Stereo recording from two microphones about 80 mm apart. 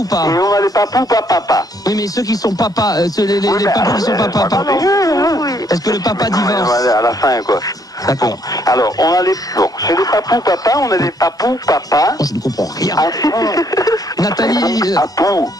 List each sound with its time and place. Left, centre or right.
0.1 s speech: left